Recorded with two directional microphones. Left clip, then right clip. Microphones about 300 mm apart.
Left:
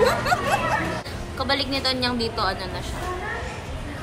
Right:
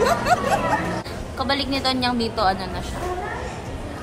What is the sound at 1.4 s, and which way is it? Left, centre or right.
A woman's voice, centre.